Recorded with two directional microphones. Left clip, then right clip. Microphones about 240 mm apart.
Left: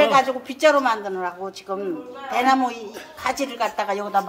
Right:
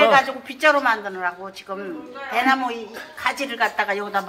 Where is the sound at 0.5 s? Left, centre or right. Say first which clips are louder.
Even; left.